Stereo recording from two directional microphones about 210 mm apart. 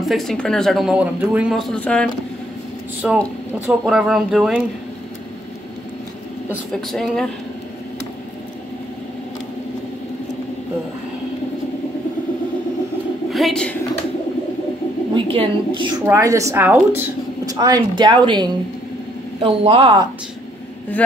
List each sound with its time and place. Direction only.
0.0 s a man's voice: centre (ahead or behind)
6.5 s a man's voice: centre (ahead or behind)
13.3 s a woman's voice: centre (ahead or behind)
15.1 s a woman's voice: 25° right (ahead or behind)